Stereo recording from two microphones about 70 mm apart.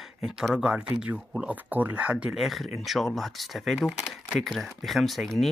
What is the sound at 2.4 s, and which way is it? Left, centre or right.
Speech, centre.